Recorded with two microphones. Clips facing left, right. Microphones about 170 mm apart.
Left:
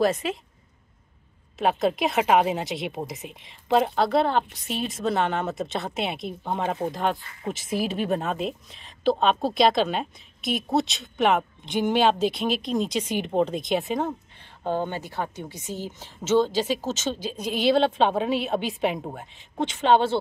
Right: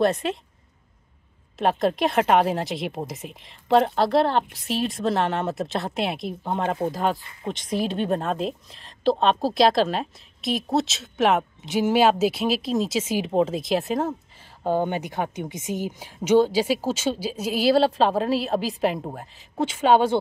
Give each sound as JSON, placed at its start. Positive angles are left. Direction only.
{"t": 0.0, "sound": "a woman's voice", "side_deg": 0}
{"t": 1.6, "sound": "a woman's voice", "side_deg": 0}
{"t": 14.6, "sound": "a woman's voice", "side_deg": -15}